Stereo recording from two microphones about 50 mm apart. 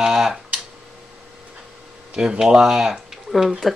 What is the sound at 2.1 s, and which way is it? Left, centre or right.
Speech, centre.